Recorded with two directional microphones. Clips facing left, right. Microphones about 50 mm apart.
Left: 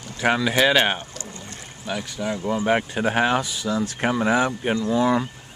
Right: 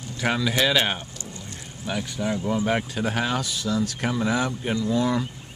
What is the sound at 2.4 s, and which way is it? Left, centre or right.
Speech, centre.